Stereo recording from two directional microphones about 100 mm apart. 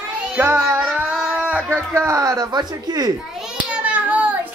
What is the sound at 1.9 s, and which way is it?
Speech, 30° right (ahead or behind).